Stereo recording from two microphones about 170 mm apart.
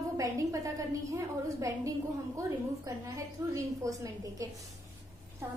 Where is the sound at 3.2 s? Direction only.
20° right (ahead or behind).